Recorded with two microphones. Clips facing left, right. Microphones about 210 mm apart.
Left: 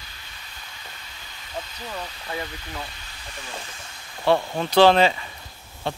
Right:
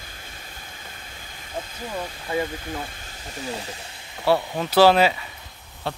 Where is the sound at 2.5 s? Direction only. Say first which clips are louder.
Right 4 dB; 45° right (ahead or behind).